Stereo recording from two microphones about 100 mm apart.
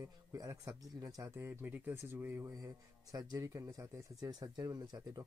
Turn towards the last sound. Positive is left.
turn(degrees=-40)  # may be behind; listen again after turning